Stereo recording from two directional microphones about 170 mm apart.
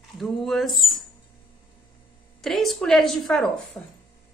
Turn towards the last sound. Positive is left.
turn(degrees=0)  # may be behind; listen again after turning